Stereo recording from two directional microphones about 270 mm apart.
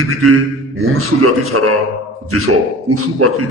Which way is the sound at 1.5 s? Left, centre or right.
Right.